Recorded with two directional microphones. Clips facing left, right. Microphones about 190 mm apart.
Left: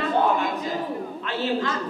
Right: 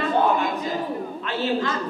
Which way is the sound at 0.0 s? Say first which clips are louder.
Right 1 dB; 25° right (ahead or behind).